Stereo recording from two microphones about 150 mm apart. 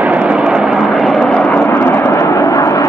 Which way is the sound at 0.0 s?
10° right (ahead or behind).